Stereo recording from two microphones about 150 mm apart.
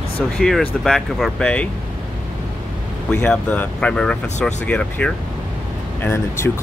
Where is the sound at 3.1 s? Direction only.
5° left (ahead or behind).